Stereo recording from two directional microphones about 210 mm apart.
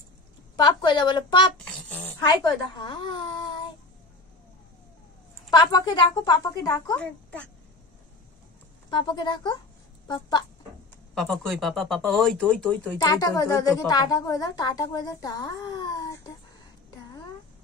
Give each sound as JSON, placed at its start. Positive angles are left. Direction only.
{"t": 0.6, "sound": "a woman's voice", "side_deg": 20}
{"t": 1.6, "sound": "a sound", "side_deg": 5}
{"t": 2.2, "sound": "a child's voice", "side_deg": 20}
{"t": 5.5, "sound": "a woman's voice", "side_deg": 20}
{"t": 7.0, "sound": "speech", "side_deg": 5}
{"t": 8.9, "sound": "a woman's voice", "side_deg": 20}
{"t": 11.1, "sound": "speech", "side_deg": 0}
{"t": 13.0, "sound": "a woman's voice", "side_deg": 15}